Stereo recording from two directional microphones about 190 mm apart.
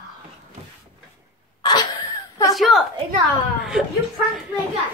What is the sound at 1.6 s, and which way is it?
Sneeze, 20° left (ahead or behind).